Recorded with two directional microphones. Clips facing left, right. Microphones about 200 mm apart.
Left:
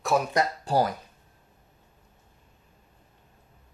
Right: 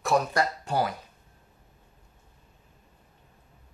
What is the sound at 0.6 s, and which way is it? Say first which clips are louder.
Speech: left 3 dB; 35° left (ahead or behind).